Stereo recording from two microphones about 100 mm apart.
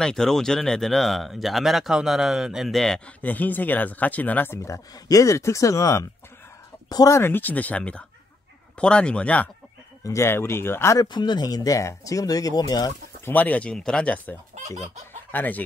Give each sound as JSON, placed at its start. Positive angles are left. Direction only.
{"t": 0.0, "sound": "speech", "side_deg": 5}
{"t": 3.2, "sound": "speech", "side_deg": 15}
{"t": 7.2, "sound": "speech", "side_deg": 20}
{"t": 10.0, "sound": "speech", "side_deg": 25}
{"t": 11.1, "sound": "speech", "side_deg": 50}
{"t": 13.2, "sound": "speech", "side_deg": 15}
{"t": 15.3, "sound": "speech", "side_deg": 15}